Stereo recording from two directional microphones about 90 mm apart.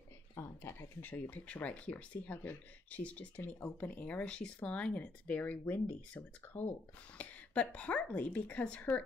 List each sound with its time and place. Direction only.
0.6 s a woman's voice: 25° left (ahead or behind)